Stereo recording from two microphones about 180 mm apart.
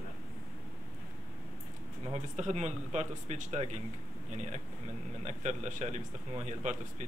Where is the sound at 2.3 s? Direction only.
40° right (ahead or behind).